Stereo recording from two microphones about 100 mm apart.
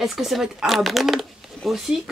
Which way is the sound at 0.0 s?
Centre (ahead or behind).